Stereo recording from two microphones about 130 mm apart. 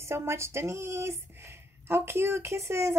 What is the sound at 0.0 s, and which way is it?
Speech, 20° right (ahead or behind).